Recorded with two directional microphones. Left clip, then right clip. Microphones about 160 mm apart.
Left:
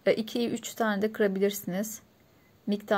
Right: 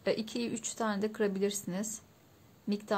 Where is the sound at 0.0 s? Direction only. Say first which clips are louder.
Left 7 dB; 15° left (ahead or behind).